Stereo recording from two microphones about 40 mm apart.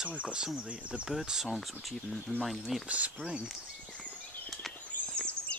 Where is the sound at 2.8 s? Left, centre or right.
Right.